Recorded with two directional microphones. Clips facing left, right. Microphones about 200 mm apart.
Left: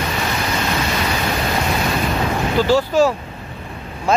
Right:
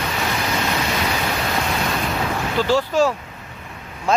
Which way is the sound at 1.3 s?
10° left (ahead or behind).